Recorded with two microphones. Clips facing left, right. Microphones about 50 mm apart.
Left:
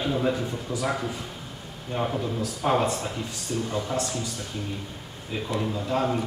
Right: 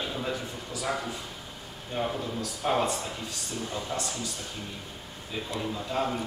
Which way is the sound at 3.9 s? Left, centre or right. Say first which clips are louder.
Left 5 dB; centre.